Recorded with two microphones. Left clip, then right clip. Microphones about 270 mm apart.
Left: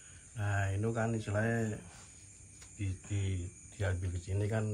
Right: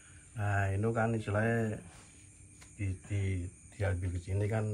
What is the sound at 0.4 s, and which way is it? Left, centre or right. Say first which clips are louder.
Speech: right 3 dB; centre.